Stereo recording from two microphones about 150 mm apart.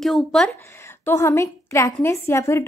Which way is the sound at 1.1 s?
20° left (ahead or behind).